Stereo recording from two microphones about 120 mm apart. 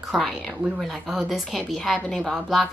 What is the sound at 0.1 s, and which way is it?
Speech, centre (ahead or behind).